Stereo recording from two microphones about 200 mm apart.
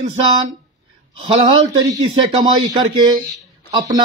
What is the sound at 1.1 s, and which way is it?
Speech, 25° right (ahead or behind).